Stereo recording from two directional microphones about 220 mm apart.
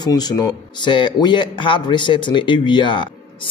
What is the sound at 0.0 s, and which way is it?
Speech, 20° left (ahead or behind).